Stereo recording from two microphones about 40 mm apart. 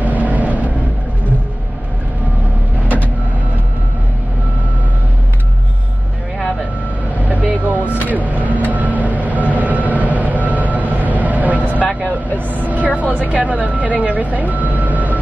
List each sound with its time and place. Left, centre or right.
0.0 s vehicle: right
7.2 s vehicle: right
7.8 s vehicle: left
8.1 s vehicle: right
11.6 s vehicle: left
12.9 s vehicle: right